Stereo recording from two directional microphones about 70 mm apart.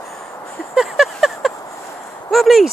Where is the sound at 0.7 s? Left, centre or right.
Centre.